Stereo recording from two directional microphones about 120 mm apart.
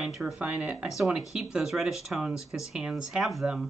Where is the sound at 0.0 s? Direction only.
Centre (ahead or behind).